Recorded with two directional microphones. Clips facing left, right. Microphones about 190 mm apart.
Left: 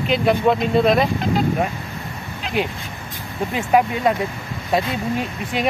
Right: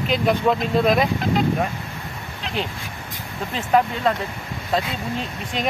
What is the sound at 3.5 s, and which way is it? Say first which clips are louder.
Speech: left 2 dB; 10° left (ahead or behind).